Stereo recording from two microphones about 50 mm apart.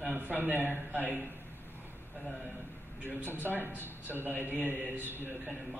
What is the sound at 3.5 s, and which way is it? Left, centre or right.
Speech, right.